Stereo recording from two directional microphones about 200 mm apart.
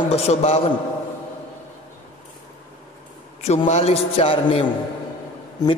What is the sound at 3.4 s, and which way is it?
A man's voice, 30° left (ahead or behind).